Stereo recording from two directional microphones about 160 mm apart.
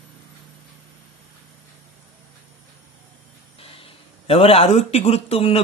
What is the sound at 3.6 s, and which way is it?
Speech, 35° left (ahead or behind).